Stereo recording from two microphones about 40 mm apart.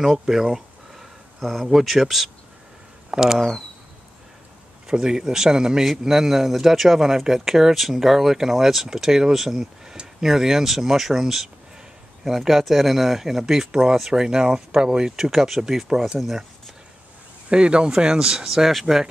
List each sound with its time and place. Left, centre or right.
0.0 s speech: centre
0.5 s speech: centre
3.1 s speech: centre
4.8 s speech: centre
17.5 s speech: right; by 19.0 s centre